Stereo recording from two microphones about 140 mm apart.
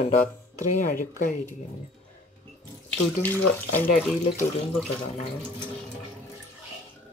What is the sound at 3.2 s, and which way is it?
Speech, 15° left (ahead or behind).